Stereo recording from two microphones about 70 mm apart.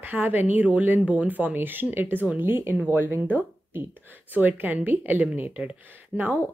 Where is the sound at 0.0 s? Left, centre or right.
Right.